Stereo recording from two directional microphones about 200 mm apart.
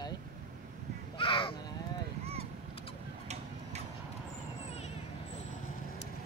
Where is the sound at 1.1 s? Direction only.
25° left (ahead or behind).